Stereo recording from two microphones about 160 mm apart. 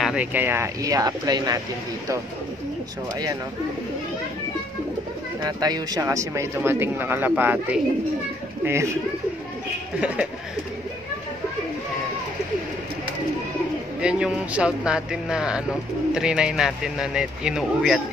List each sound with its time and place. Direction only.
0.0 s speech: 5° right (ahead or behind); by 1.6 s 25° right (ahead or behind)
5.4 s speech: 25° right (ahead or behind)
9.9 s speech: 5° right (ahead or behind)
14.0 s a man's voice: 5° right (ahead or behind)